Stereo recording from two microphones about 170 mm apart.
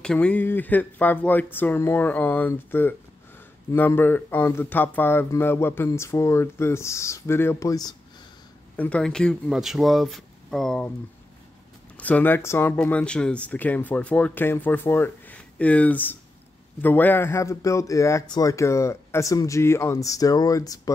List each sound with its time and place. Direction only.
0.0 s speech: 5° left (ahead or behind)
8.7 s speech: 10° left (ahead or behind)
12.0 s speech: 10° left (ahead or behind)